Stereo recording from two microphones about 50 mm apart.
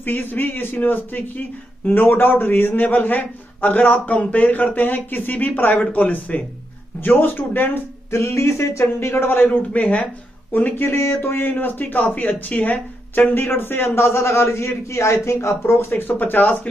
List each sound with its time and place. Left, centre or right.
0.0 s a man's voice: left
8.1 s a man's voice: left
9.7 s speech: left
10.5 s speech: left
11.0 s speech: left